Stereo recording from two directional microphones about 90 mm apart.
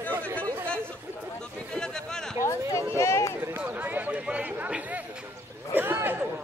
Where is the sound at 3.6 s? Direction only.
20° right (ahead or behind).